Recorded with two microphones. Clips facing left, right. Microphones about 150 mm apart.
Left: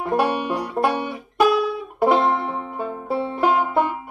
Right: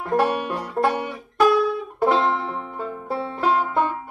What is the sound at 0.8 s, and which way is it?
Music, 20° left (ahead or behind).